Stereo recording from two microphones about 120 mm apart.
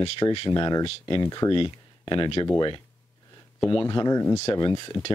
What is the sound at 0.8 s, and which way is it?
Speech, 45° left (ahead or behind).